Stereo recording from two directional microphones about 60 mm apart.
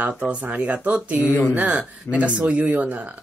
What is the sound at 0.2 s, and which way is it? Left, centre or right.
Speech, right.